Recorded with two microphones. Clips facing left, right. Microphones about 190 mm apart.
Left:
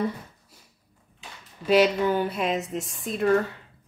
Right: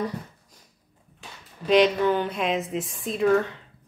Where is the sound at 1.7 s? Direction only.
10° left (ahead or behind).